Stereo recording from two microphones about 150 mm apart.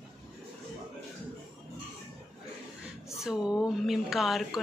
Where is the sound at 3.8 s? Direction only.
Centre (ahead or behind).